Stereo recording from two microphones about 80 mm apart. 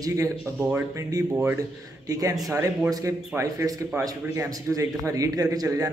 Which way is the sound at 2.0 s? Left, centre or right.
Right.